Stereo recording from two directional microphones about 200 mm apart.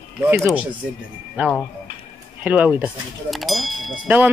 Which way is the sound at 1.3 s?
Centre (ahead or behind).